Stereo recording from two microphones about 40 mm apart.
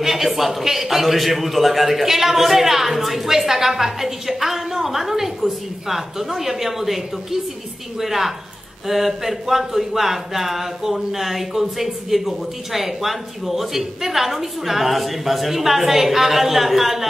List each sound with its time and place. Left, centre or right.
0.0 s speech: centre
8.0 s speech: centre